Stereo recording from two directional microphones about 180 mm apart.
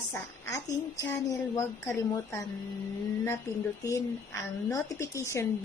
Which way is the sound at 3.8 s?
15° left (ahead or behind).